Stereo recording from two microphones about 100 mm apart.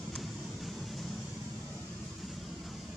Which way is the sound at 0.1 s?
Centre (ahead or behind).